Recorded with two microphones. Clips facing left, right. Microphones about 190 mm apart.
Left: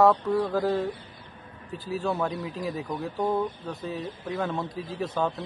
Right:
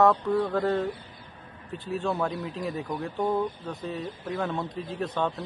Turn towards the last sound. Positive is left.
turn(degrees=5)  # may be behind; listen again after turning